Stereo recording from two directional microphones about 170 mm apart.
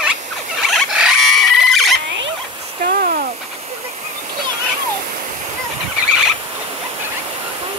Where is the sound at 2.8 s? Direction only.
60° right (ahead or behind).